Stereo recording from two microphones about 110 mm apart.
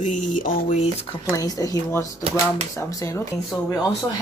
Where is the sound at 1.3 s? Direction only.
35° left (ahead or behind).